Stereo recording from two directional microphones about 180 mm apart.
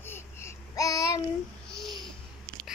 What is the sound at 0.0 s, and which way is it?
Child singing, 15° left (ahead or behind).